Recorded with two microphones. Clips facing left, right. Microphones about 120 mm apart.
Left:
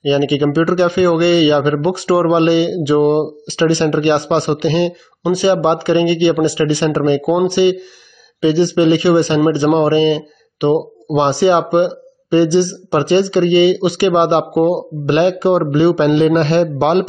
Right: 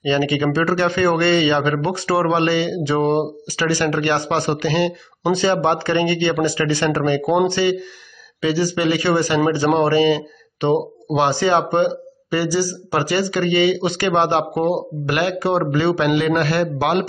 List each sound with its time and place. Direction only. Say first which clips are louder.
0.0 s a man's voice: left 5 dB; 15° left (ahead or behind)